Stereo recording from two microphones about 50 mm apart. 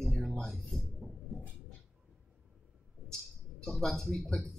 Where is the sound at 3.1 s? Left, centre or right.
Centre.